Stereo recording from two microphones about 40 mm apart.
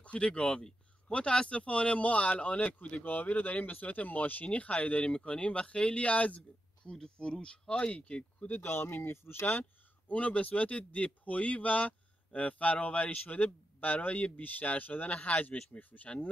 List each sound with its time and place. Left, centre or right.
0.0 s a sound: left
0.3 s speech: left
3.1 s speech: left
6.9 s speech: left
7.9 s speech: left
8.6 s speech: left
10.0 s speech: left